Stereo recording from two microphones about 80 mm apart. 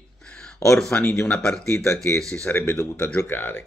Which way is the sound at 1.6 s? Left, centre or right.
Left.